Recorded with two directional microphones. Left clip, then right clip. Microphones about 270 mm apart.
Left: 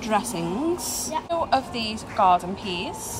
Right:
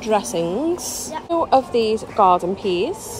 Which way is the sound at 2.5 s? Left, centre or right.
Centre.